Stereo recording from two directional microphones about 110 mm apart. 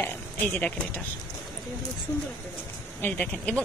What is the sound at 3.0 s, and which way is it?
Speech, 10° left (ahead or behind).